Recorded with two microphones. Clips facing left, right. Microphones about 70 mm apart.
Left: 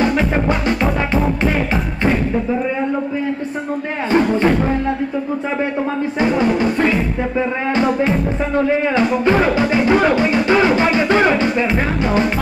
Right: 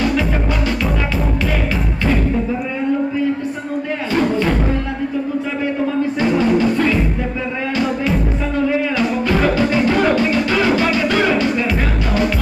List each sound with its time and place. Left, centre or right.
0.7 s music: left
6.1 s music: left